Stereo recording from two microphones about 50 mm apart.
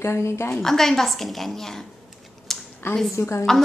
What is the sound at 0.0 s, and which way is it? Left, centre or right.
Speech, left.